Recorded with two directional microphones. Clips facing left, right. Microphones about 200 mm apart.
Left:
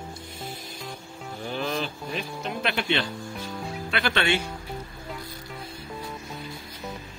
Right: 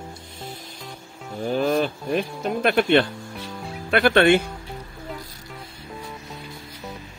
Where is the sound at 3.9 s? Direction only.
50° right (ahead or behind).